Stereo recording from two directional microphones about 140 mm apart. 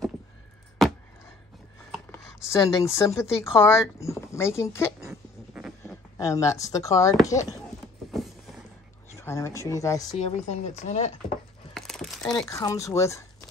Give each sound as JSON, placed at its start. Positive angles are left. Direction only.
{"t": 0.8, "sound": "a sound", "side_deg": 0}
{"t": 2.5, "sound": "speech", "side_deg": 20}
{"t": 9.2, "sound": "speech", "side_deg": 20}
{"t": 10.1, "sound": "speech", "side_deg": 50}
{"t": 11.7, "sound": "a sound", "side_deg": 0}
{"t": 12.4, "sound": "speech", "side_deg": 20}